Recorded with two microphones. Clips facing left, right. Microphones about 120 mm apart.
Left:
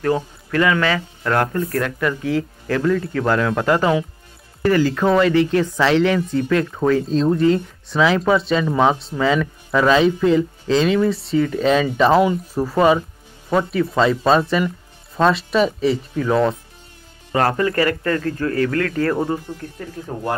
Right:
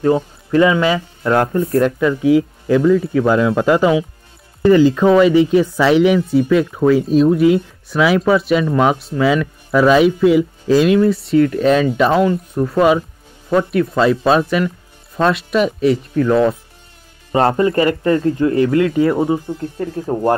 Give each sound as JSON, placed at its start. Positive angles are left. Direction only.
{"t": 0.0, "sound": "speech", "side_deg": -20}
{"t": 17.3, "sound": "speech", "side_deg": -25}
{"t": 19.8, "sound": "speech", "side_deg": -35}